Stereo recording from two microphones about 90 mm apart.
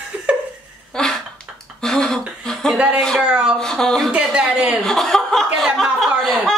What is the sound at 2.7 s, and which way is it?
Speech, 15° right (ahead or behind).